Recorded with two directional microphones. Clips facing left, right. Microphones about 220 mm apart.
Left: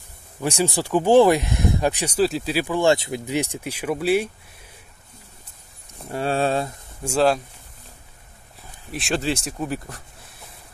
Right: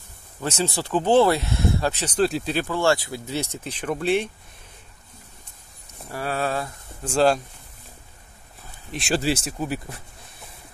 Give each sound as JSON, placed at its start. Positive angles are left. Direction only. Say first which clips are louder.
{"t": 0.4, "sound": "speech", "louder": "left 3 dB", "side_deg": 15}
{"t": 6.0, "sound": "speech", "louder": "left 4 dB", "side_deg": 25}
{"t": 7.1, "sound": "speech", "louder": "even", "side_deg": 0}
{"t": 8.9, "sound": "speech", "louder": "right 1 dB", "side_deg": 0}